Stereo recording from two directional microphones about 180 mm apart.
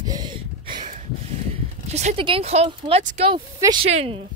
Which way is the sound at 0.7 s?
45° right (ahead or behind).